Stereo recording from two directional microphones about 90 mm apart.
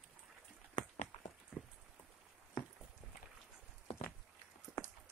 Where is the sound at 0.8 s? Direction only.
55° left (ahead or behind).